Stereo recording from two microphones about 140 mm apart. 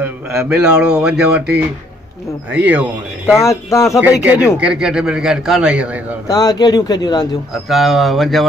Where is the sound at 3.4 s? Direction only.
20° left (ahead or behind).